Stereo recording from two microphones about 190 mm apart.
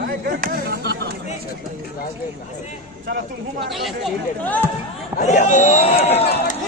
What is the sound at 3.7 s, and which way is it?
Speech, centre (ahead or behind).